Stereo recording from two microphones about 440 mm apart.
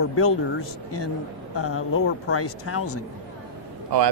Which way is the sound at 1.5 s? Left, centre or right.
Left.